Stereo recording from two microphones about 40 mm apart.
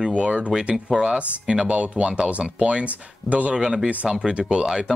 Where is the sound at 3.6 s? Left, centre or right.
Centre.